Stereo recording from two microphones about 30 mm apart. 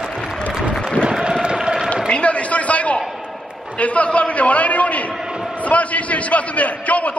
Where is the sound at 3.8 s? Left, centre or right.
Left.